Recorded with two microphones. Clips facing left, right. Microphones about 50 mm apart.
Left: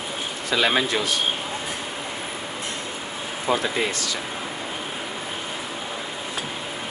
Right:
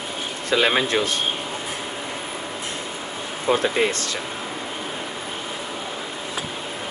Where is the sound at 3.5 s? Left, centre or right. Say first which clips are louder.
Right 2 dB; right.